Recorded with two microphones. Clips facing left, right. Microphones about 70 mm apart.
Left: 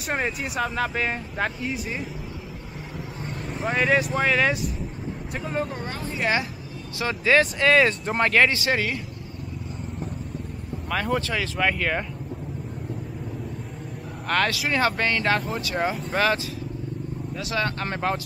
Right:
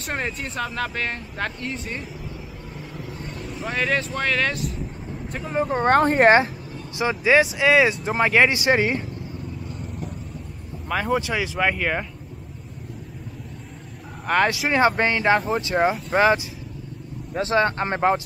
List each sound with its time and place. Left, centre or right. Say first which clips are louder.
0.1 s speech: left 2 dB; centre
3.6 s speech: left 2 dB; centre
5.3 s speech: right 1 dB; centre
5.7 s speech: right 14 dB; right
7.0 s speech: right 2 dB; centre
10.9 s speech: right 2 dB; centre
14.2 s speech: right 3 dB; centre
17.3 s speech: right 7 dB; right